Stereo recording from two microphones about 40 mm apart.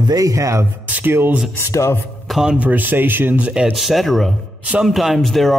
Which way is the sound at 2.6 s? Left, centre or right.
Right.